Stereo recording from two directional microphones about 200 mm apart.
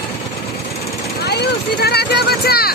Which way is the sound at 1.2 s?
55° left (ahead or behind).